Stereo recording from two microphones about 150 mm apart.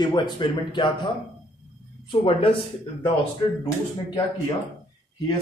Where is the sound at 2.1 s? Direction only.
35° left (ahead or behind).